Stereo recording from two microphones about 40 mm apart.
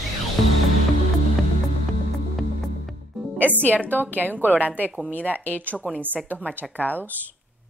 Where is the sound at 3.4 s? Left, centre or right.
Right.